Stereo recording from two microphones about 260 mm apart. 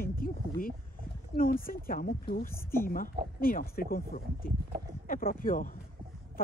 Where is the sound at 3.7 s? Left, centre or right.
Left.